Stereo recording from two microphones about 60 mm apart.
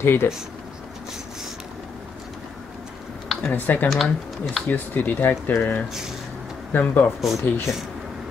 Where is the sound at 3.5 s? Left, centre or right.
Left.